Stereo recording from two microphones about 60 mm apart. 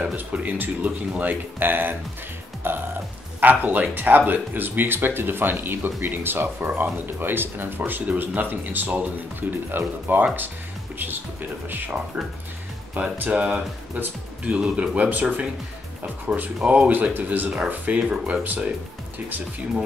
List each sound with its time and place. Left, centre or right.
0.0 s speech: right
13.0 s speech: right